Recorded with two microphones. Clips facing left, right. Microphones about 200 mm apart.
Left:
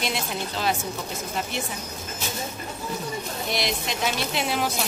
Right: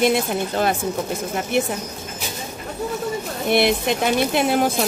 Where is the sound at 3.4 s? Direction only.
55° right (ahead or behind).